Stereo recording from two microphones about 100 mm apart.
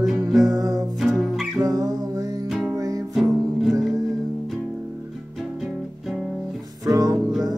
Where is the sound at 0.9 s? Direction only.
Centre (ahead or behind).